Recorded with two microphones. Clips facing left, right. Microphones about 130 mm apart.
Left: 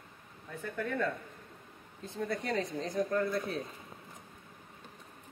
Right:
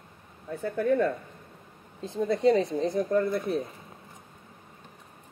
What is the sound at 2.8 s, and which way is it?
Speech, 60° right (ahead or behind).